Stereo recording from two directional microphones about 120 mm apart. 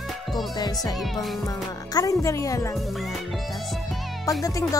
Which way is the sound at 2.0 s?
25° left (ahead or behind).